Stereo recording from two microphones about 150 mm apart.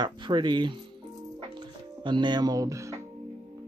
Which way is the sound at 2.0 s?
30° right (ahead or behind).